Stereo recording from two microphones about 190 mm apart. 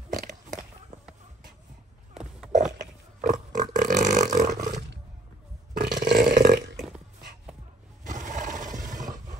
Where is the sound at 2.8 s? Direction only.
40° right (ahead or behind).